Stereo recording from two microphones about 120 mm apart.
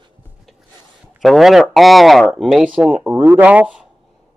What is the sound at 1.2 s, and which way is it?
Speech, centre (ahead or behind).